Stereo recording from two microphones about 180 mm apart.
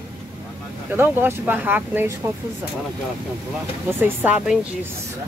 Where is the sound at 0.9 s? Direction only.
15° right (ahead or behind).